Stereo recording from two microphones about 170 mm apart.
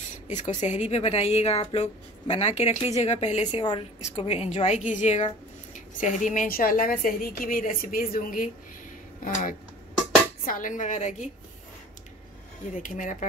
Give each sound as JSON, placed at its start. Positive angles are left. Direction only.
{"t": 0.3, "sound": "a woman's voice", "side_deg": 45}
{"t": 12.8, "sound": "a woman's voice", "side_deg": 50}